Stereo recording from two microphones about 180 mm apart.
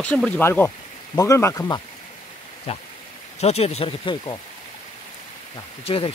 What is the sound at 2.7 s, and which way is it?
Speech, 35° left (ahead or behind).